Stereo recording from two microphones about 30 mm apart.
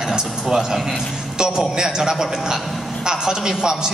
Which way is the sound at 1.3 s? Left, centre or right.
Right.